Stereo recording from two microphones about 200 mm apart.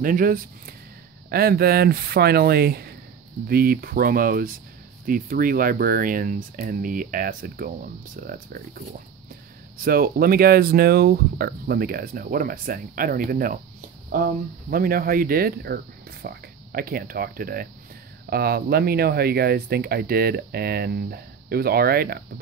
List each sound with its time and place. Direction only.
0.0 s speech: 45° right (ahead or behind)